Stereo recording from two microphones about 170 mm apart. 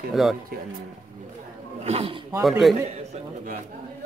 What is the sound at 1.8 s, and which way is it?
Speech, 40° right (ahead or behind).